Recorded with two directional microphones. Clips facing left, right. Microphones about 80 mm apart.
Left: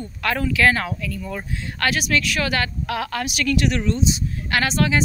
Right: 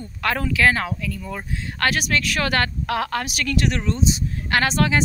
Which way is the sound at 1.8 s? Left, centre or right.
Right.